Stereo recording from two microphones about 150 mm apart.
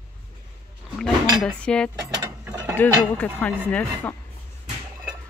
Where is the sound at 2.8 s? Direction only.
10° left (ahead or behind).